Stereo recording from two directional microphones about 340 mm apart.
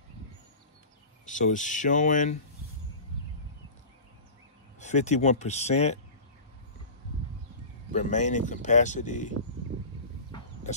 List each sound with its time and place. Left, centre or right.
1.2 s speech: left
4.7 s speech: left
7.9 s speech: left